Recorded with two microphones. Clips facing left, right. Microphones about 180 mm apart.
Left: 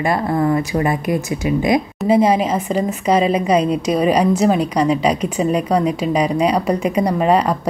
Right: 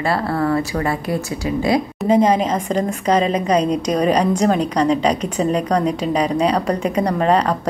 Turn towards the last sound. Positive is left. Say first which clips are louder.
# left 1 dB
turn(degrees=10)  # may be behind; listen again after turning